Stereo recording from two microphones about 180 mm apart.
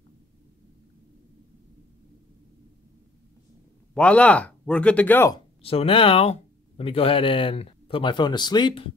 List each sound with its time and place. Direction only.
3.9 s speech: 5° left (ahead or behind)
5.3 s speech: 30° left (ahead or behind)